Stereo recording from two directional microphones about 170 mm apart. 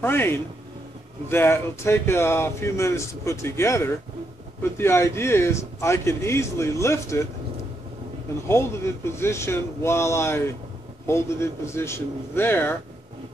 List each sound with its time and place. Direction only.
0.0 s speech: 15° left (ahead or behind)
8.5 s speech: 15° left (ahead or behind)